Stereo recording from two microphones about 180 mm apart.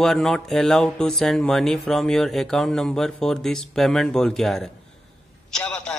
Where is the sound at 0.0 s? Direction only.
Centre (ahead or behind).